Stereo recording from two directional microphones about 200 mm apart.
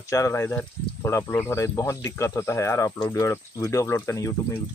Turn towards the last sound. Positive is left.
turn(degrees=15)  # may be behind; listen again after turning